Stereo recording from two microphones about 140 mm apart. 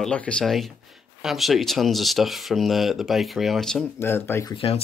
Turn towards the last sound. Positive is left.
turn(degrees=40)  # may be behind; listen again after turning